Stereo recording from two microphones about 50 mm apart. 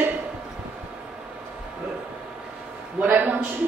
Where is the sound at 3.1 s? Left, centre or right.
Right.